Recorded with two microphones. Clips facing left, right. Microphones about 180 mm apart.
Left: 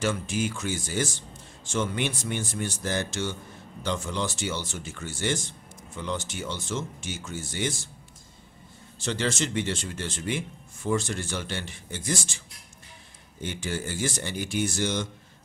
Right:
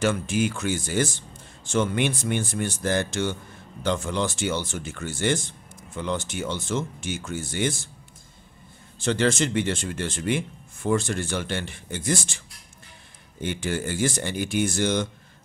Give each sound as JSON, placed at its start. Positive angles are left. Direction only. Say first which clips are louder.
{"t": 0.0, "sound": "speech", "louder": "right 4 dB", "side_deg": -60}
{"t": 9.0, "sound": "speech", "louder": "right 6 dB", "side_deg": -55}
{"t": 13.4, "sound": "speech", "louder": "right 4 dB", "side_deg": -60}